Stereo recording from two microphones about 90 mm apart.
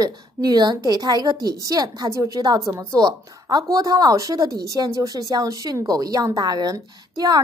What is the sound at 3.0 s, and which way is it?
A woman's voice, 45° right (ahead or behind).